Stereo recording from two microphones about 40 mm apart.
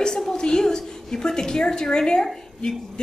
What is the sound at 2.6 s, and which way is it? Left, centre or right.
Speech, left.